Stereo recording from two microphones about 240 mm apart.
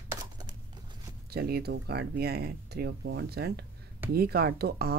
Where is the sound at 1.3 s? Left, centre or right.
Right.